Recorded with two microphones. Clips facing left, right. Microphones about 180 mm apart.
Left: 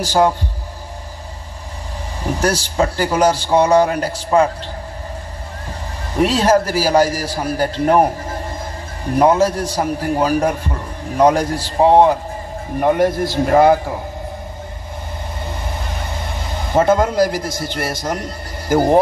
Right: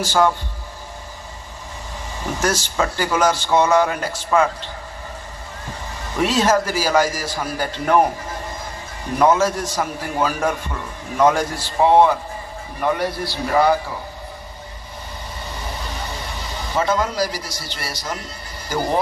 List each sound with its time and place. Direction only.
0.0 s a man's voice: 35° left (ahead or behind)
2.3 s a man's voice: 35° left (ahead or behind)
6.1 s a man's voice: 35° left (ahead or behind)
9.2 s a man's voice: 35° left (ahead or behind)
12.8 s a man's voice: 50° left (ahead or behind)
16.3 s speech: 55° left (ahead or behind)